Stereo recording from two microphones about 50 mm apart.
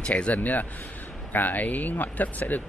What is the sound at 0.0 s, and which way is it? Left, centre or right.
Speech, left.